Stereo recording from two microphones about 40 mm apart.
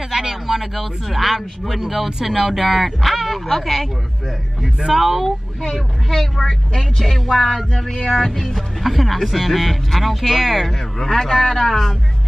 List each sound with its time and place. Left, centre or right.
0.1 s speech: centre
4.8 s speech: centre
6.0 s speech: centre
8.2 s speech: centre
11.0 s speech: centre